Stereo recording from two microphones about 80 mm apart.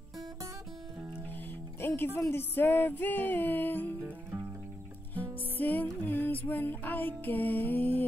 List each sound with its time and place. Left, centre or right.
1.8 s music: left
5.1 s music: left